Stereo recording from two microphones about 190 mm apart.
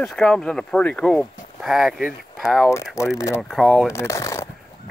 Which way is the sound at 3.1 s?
15° left (ahead or behind).